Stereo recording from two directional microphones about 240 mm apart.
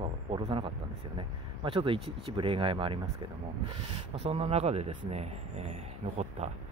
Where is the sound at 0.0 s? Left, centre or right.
Right.